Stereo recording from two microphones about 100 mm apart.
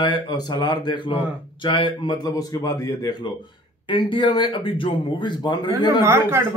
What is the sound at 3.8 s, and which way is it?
Speech, 55° left (ahead or behind).